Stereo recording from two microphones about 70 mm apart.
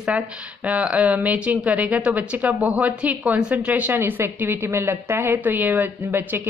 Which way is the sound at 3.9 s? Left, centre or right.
Right.